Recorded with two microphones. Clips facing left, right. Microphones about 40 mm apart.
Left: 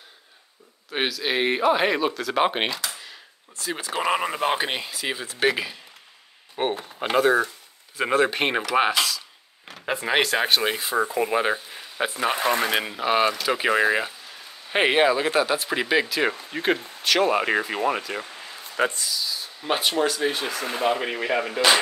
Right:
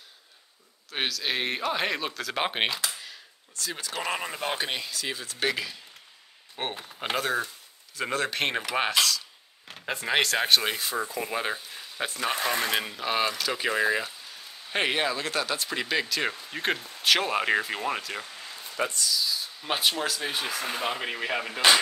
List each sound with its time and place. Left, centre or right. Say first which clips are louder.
0.8 s speech: left 4 dB; centre
6.5 s speech: left 8 dB; centre
8.0 s speech: left 7 dB; centre
18.2 s a sound: left 3 dB; centre
18.9 s speech: left 1 dB; left
19.1 s speech: even; centre